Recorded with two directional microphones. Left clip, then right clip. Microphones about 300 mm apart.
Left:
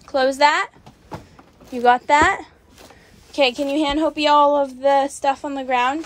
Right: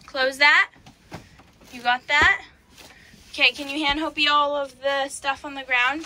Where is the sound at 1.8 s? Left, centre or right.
Centre.